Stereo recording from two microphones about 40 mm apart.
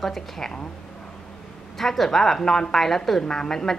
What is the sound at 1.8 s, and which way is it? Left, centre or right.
A woman's voice, centre.